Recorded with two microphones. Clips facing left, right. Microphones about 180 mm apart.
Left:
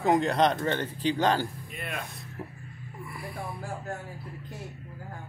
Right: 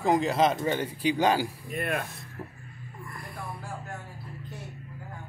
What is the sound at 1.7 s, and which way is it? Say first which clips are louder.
Speech: right 8 dB; 55° right (ahead or behind).